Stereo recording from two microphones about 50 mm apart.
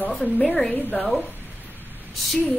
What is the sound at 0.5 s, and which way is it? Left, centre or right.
Speech, centre.